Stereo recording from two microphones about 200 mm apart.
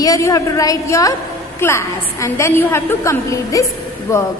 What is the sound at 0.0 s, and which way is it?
A woman's voice, 15° left (ahead or behind).